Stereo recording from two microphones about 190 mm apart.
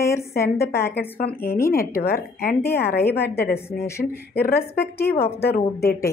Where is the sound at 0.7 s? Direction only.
55° left (ahead or behind).